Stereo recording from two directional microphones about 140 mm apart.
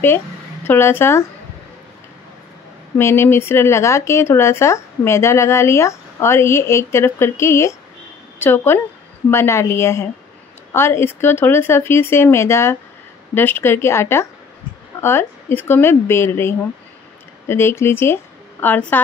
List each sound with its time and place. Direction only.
0.7 s speech: 15° left (ahead or behind)
3.0 s a woman's voice: 20° left (ahead or behind)